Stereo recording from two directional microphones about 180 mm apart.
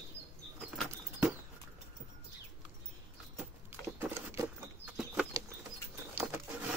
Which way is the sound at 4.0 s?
10° right (ahead or behind).